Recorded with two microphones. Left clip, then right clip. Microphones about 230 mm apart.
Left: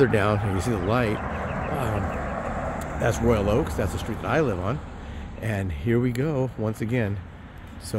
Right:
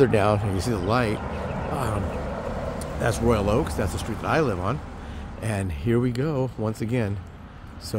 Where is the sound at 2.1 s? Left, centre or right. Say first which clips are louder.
Left 1 dB; right.